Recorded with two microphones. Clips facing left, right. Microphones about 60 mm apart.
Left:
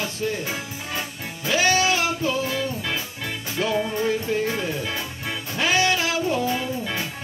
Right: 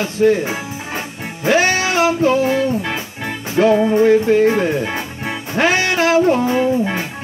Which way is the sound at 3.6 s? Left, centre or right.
Right.